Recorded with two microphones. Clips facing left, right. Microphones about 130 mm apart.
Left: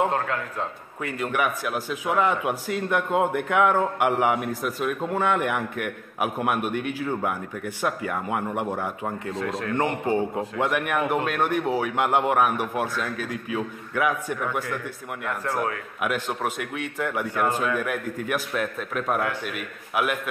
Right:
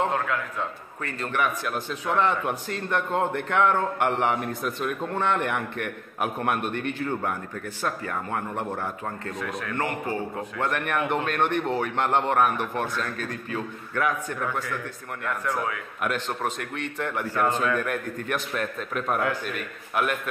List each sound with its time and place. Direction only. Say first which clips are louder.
0.1 s a man's voice: left 1 dB; 35° left (ahead or behind)
1.0 s a man's voice: left 2 dB; 10° left (ahead or behind)
9.3 s a man's voice: left 6 dB; 25° left (ahead or behind)
10.7 s a man's voice: even; 5° left (ahead or behind)